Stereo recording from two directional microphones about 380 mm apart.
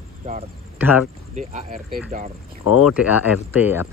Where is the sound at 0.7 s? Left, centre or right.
Centre.